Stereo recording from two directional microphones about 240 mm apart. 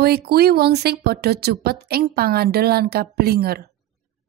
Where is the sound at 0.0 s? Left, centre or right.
Right.